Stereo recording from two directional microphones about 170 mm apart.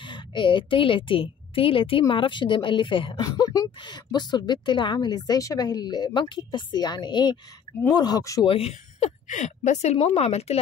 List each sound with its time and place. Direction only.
0.0 s a woman's voice: 30° left (ahead or behind)
8.5 s a woman's voice: 35° left (ahead or behind)